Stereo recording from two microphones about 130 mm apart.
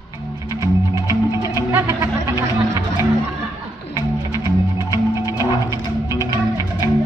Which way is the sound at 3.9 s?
25° right (ahead or behind).